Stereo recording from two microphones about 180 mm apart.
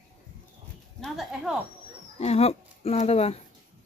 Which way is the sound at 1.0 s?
Centre (ahead or behind).